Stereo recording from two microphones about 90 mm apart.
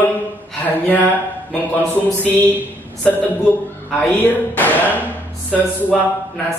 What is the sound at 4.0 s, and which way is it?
Speech, 20° left (ahead or behind).